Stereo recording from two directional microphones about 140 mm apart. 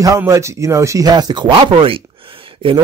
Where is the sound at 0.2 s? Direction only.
20° right (ahead or behind).